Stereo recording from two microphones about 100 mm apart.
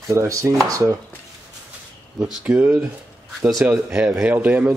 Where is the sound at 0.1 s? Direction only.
30° right (ahead or behind).